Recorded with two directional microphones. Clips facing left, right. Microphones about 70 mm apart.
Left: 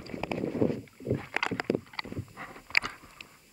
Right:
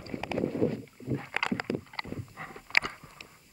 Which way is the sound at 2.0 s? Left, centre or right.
Centre.